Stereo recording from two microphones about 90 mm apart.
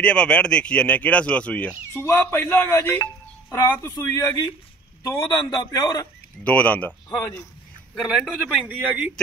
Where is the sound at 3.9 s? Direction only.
35° left (ahead or behind).